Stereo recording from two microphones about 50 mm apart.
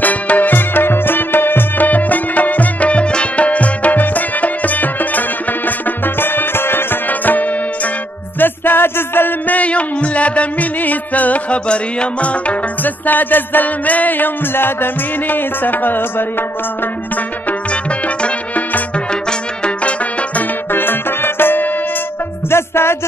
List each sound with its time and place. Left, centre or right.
0.0 s music: left
7.1 s music: left
8.4 s music: left
9.5 s music: left
17.5 s music: left
19.6 s music: left
20.7 s music: left
22.5 s music: left